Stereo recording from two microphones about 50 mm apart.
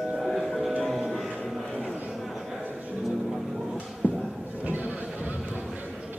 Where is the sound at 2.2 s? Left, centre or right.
Centre.